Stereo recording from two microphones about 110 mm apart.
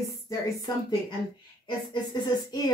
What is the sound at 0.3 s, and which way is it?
Speech, 35° left (ahead or behind).